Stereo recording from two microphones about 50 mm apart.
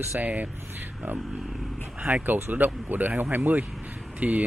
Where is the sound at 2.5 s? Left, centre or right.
Right.